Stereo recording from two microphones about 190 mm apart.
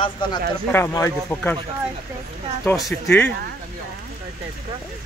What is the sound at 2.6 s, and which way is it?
Speech, 15° left (ahead or behind).